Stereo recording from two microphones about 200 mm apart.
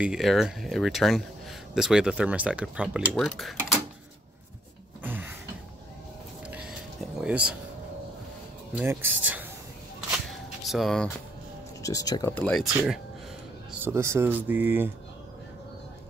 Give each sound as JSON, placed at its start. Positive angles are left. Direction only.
{"t": 0.0, "sound": "speech", "side_deg": 0}
{"t": 5.0, "sound": "a sound", "side_deg": -10}
{"t": 6.4, "sound": "music", "side_deg": -5}
{"t": 8.7, "sound": "speech", "side_deg": -10}
{"t": 10.6, "sound": "speech", "side_deg": 0}
{"t": 11.8, "sound": "speech", "side_deg": 15}